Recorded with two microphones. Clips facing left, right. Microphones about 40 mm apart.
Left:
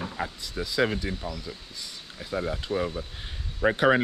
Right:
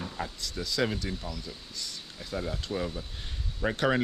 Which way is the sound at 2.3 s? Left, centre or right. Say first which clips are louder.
Left 5 dB; centre.